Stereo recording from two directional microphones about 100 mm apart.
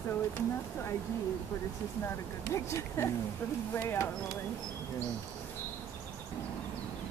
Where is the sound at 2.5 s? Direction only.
30° left (ahead or behind).